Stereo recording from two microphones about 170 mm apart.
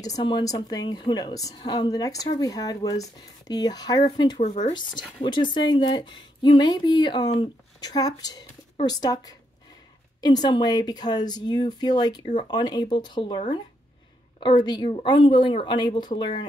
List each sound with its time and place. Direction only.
0.0 s a woman's voice: 25° left (ahead or behind)
14.4 s a woman's voice: 25° left (ahead or behind)